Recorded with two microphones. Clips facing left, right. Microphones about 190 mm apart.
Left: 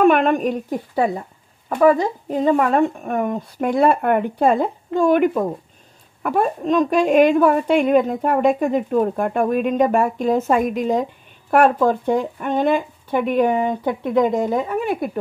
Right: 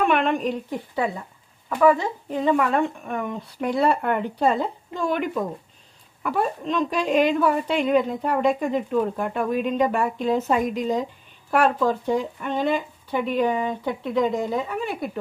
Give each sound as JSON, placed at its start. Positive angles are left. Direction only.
{"t": 0.0, "sound": "a woman's voice", "side_deg": 45}